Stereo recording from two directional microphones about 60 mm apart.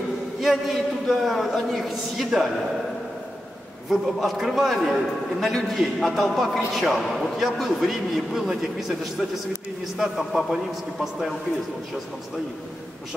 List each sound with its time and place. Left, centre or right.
0.4 s a man's voice: centre
3.9 s a man's voice: centre